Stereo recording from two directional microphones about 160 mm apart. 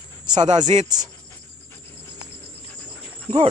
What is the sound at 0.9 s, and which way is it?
Speech, 25° right (ahead or behind).